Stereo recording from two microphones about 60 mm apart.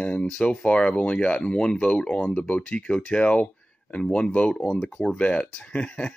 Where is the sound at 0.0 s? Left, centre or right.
Centre.